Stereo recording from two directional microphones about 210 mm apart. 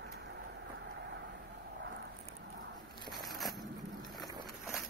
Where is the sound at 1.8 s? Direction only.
55° right (ahead or behind).